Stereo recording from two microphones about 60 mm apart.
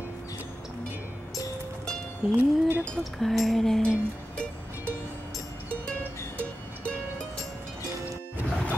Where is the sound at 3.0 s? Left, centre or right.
Centre.